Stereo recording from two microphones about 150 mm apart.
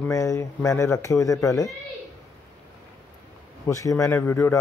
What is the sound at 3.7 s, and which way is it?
Speech, 20° left (ahead or behind).